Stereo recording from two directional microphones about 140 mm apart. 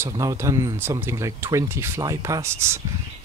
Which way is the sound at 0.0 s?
20° right (ahead or behind).